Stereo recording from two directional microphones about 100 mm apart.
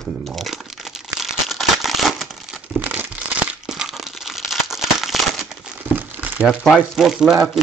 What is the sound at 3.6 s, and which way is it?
Crumpling, 5° right (ahead or behind).